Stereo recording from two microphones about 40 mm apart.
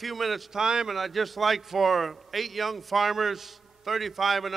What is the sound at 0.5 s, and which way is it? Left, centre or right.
Speech, centre.